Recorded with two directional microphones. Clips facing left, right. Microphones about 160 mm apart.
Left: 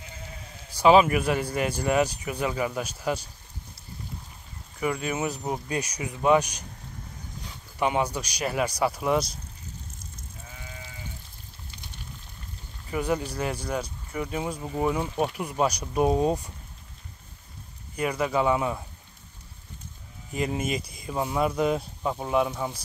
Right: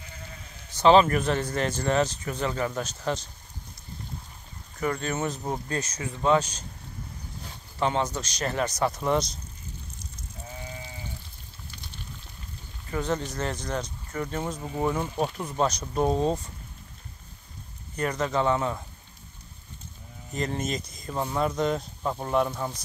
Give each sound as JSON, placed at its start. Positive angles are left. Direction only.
{"t": 0.7, "sound": "speech", "side_deg": 10}
{"t": 4.7, "sound": "speech", "side_deg": 10}
{"t": 7.8, "sound": "speech", "side_deg": 10}
{"t": 12.9, "sound": "speech", "side_deg": 10}
{"t": 17.9, "sound": "speech", "side_deg": 10}
{"t": 20.3, "sound": "speech", "side_deg": 10}